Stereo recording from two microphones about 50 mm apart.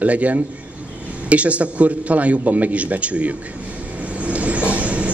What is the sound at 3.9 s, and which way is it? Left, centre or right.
Vehicle, right.